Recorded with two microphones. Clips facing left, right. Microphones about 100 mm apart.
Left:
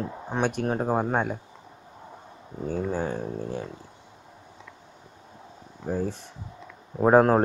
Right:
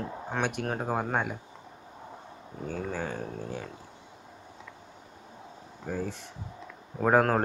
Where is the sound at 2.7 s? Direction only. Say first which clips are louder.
Left 6 dB; 30° left (ahead or behind).